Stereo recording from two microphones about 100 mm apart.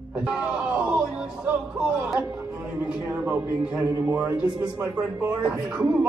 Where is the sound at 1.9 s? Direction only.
25° right (ahead or behind).